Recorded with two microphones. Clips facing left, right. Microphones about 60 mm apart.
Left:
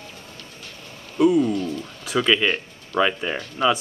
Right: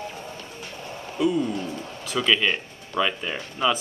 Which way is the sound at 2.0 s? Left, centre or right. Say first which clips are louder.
Left 2 dB; centre.